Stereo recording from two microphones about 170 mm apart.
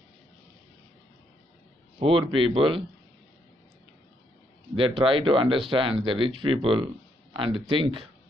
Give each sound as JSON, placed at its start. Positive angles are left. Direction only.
{"t": 2.0, "sound": "speech", "side_deg": -30}
{"t": 4.7, "sound": "speech", "side_deg": -30}